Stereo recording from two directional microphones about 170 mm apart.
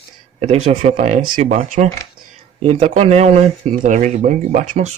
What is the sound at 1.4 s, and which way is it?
Speech, 50° right (ahead or behind).